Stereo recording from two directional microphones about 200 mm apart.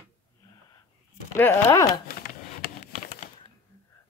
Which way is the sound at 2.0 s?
50° left (ahead or behind).